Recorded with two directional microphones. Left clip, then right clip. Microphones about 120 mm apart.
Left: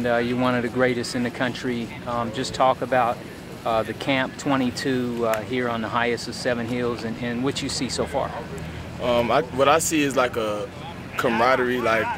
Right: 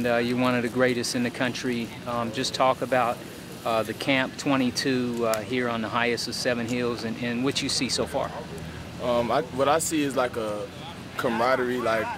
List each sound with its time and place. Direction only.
0.0 s speech: 35° right (ahead or behind)
9.0 s speech: centre (ahead or behind)